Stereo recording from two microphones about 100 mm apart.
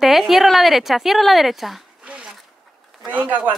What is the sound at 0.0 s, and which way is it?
A woman's voice, centre (ahead or behind).